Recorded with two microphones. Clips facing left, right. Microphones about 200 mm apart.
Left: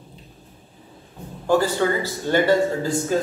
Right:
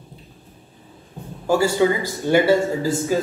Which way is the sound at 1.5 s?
10° right (ahead or behind).